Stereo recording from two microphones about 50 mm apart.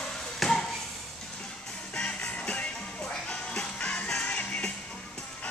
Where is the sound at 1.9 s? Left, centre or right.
Left.